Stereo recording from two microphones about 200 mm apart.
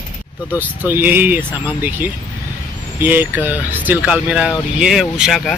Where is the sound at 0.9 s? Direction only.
10° right (ahead or behind).